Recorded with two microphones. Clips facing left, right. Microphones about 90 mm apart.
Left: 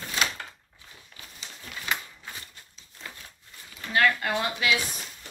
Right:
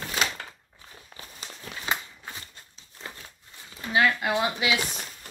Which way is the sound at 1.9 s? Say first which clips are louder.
Right 2 dB; 25° right (ahead or behind).